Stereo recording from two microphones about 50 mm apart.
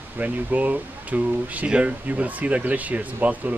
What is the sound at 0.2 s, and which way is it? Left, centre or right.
Speech, right.